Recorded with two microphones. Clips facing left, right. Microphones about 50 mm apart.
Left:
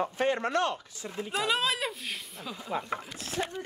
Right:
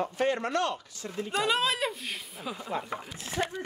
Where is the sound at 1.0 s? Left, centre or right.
Centre.